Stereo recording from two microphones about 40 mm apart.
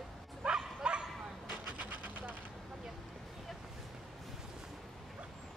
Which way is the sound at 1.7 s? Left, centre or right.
Right.